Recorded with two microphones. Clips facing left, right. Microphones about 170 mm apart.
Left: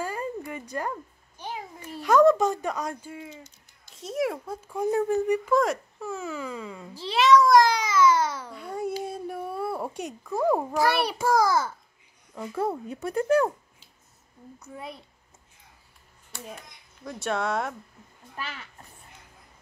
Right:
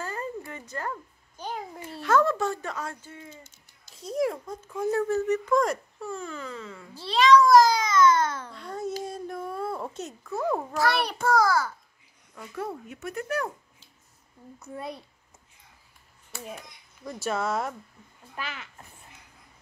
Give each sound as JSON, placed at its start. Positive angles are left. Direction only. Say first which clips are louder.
{"t": 0.0, "sound": "a sound", "louder": "left 3 dB", "side_deg": 10}
{"t": 1.9, "sound": "speech", "louder": "left 5 dB", "side_deg": 15}
{"t": 3.9, "sound": "speech", "louder": "right 1 dB", "side_deg": 0}
{"t": 7.9, "sound": "a sound", "louder": "even", "side_deg": 10}
{"t": 9.9, "sound": "speech", "louder": "left 3 dB", "side_deg": 15}
{"t": 12.8, "sound": "speech", "louder": "left 7 dB", "side_deg": 30}
{"t": 17.0, "sound": "speech", "louder": "left 1 dB", "side_deg": 0}